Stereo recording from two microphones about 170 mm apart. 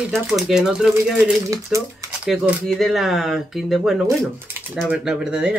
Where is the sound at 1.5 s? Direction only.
20° right (ahead or behind).